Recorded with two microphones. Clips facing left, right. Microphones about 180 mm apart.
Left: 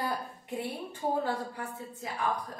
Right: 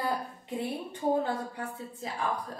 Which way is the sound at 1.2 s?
25° right (ahead or behind).